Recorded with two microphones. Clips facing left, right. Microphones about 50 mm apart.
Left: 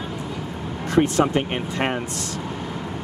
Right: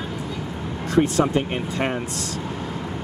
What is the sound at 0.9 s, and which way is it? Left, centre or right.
Speech, left.